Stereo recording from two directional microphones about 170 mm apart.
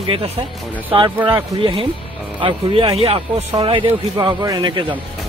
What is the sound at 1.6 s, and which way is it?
Music, 30° right (ahead or behind).